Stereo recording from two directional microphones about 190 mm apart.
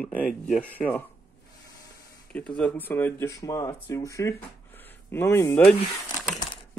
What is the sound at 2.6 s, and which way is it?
Speech, 10° left (ahead or behind).